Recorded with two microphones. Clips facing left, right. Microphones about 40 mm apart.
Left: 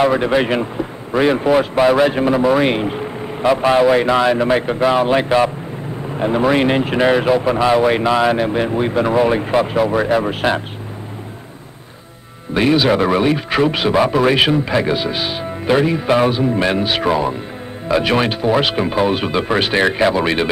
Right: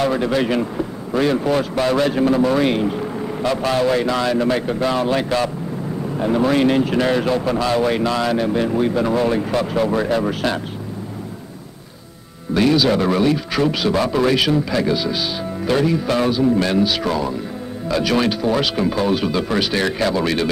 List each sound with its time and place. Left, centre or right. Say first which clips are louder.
0.0 s a man's voice: left 4 dB; left
12.5 s a man's voice: left 2 dB; left